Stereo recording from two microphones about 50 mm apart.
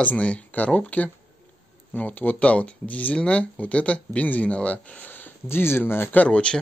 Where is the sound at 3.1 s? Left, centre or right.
Centre; by 5.3 s left.